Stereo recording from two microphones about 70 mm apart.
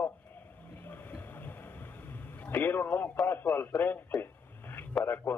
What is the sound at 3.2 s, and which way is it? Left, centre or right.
Speech, left.